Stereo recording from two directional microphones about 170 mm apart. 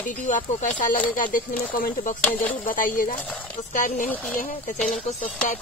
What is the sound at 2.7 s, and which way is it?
Speech, 55° left (ahead or behind).